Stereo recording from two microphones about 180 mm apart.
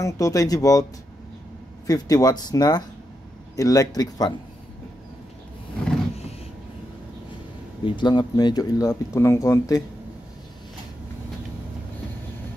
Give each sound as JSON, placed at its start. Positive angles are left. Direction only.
{"t": 0.0, "sound": "speech", "side_deg": 20}
{"t": 1.9, "sound": "speech", "side_deg": 20}
{"t": 7.8, "sound": "speech", "side_deg": 25}